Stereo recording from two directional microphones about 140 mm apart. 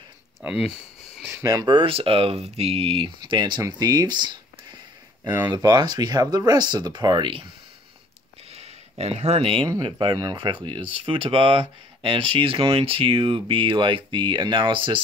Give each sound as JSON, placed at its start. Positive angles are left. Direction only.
{"t": 0.4, "sound": "speech", "side_deg": -5}
{"t": 1.2, "sound": "speech", "side_deg": -20}
{"t": 8.5, "sound": "a sound", "side_deg": -50}
{"t": 9.7, "sound": "speech", "side_deg": -35}